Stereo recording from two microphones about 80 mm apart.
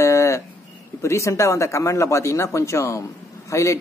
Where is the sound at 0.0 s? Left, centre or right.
Left.